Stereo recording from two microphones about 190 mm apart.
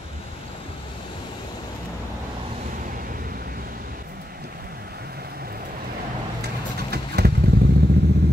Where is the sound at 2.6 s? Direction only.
45° right (ahead or behind).